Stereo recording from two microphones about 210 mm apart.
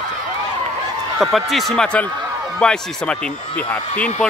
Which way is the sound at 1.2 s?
Centre (ahead or behind).